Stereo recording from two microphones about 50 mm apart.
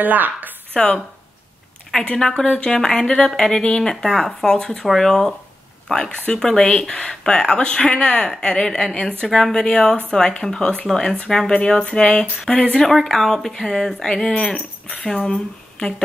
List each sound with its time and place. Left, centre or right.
0.0 s speech: right
0.7 s speech: centre
2.1 s speech: centre
12.7 s speech: centre